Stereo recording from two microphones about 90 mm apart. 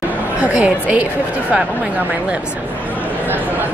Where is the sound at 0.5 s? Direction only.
15° right (ahead or behind).